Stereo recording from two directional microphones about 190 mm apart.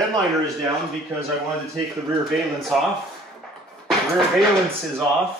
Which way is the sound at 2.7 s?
Centre (ahead or behind).